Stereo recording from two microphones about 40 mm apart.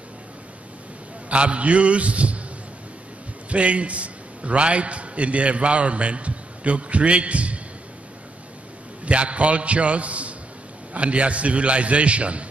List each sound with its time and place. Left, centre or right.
1.3 s a man's voice: right
3.4 s a man's voice: right
9.0 s a man's voice: right